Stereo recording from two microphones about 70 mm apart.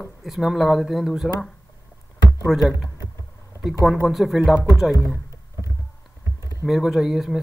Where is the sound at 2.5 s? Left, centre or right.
Centre.